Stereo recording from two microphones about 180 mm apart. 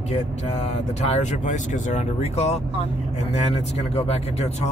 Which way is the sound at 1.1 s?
40° left (ahead or behind).